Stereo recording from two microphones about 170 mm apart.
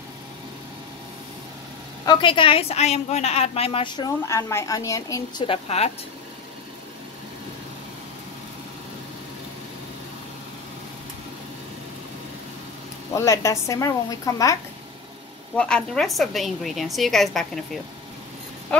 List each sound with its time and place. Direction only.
2.0 s a woman's voice: 30° left (ahead or behind)
5.5 s speech: 40° left (ahead or behind)
13.1 s a woman's voice: 20° left (ahead or behind)
15.5 s a woman's voice: 5° left (ahead or behind)
18.7 s speech: 5° left (ahead or behind)